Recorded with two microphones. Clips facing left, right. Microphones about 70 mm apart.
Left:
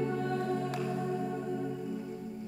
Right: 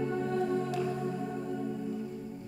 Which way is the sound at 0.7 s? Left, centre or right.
Centre.